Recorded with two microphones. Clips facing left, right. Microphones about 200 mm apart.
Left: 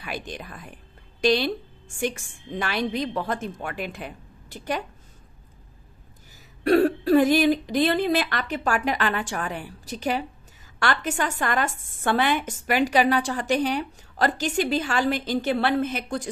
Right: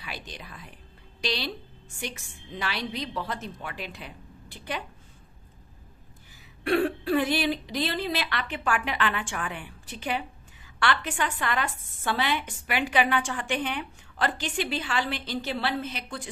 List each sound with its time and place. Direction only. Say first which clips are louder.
0.0 s a woman's voice: left 7 dB; 50° left (ahead or behind)
6.6 s a woman's voice: left 6 dB; 40° left (ahead or behind)